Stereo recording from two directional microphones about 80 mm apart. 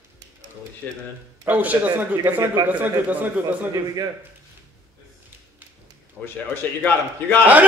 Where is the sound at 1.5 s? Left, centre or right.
Right.